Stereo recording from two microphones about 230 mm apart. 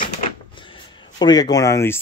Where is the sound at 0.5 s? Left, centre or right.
Left.